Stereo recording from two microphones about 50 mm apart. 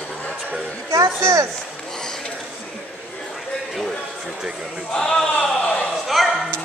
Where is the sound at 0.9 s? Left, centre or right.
Right.